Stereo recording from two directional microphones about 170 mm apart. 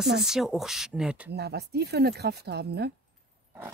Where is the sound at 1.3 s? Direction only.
75° right (ahead or behind).